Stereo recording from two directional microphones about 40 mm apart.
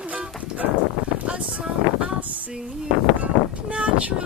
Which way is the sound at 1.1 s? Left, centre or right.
Right.